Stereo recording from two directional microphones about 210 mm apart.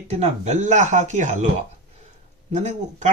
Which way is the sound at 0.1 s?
35° right (ahead or behind).